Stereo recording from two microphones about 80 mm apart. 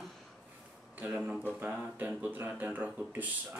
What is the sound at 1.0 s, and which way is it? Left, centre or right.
Speech, centre.